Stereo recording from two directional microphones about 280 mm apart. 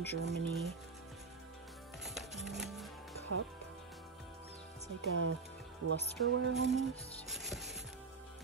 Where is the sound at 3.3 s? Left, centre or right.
Right.